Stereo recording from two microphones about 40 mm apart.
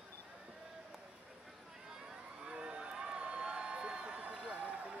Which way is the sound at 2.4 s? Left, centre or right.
Right.